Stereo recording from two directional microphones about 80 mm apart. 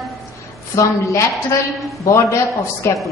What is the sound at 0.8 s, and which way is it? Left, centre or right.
Speech, left.